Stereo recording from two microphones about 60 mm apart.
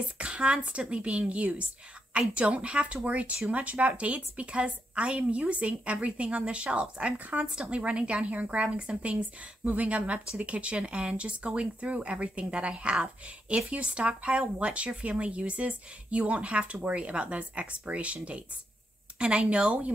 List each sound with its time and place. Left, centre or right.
0.2 s a woman's voice: centre